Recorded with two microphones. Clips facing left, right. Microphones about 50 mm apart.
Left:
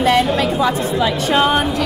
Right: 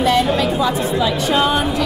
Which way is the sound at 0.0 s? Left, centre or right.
Left.